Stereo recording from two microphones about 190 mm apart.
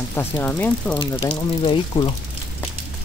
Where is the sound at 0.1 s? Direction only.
10° left (ahead or behind).